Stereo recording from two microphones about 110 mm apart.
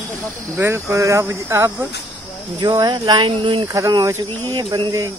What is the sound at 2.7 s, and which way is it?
Speech, 40° right (ahead or behind).